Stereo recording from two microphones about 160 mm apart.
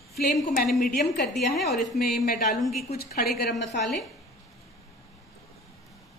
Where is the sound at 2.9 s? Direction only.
75° left (ahead or behind).